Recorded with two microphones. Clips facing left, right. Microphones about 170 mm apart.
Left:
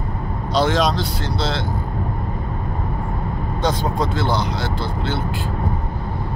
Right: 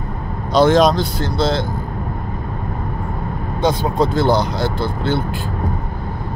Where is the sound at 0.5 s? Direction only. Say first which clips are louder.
Right 6 dB; 50° right (ahead or behind).